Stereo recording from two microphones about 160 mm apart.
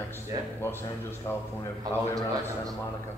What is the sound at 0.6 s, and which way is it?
A man's voice, 15° left (ahead or behind).